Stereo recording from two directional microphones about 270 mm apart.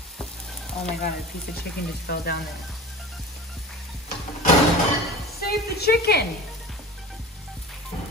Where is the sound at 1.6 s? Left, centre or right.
Left.